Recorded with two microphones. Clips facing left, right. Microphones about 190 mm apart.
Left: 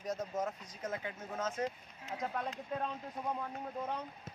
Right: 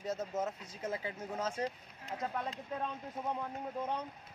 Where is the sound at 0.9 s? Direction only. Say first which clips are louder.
Right 1 dB; 30° right (ahead or behind).